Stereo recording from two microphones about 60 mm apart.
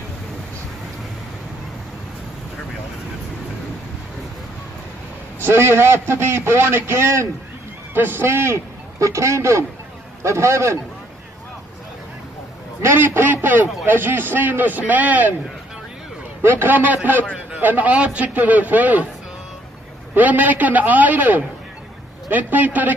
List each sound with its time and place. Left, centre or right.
5.4 s a man's voice: right
7.9 s a man's voice: right
12.8 s a man's voice: right
16.4 s a man's voice: right
20.2 s a man's voice: right